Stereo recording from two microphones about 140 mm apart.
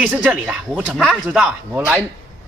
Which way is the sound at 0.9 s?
5° left (ahead or behind).